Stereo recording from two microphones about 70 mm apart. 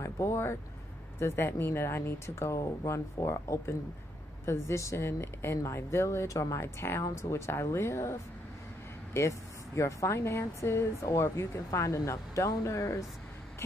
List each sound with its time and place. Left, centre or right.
0.0 s speech: left